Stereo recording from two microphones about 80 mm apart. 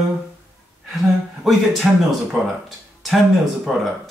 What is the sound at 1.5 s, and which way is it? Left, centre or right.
Speech, centre.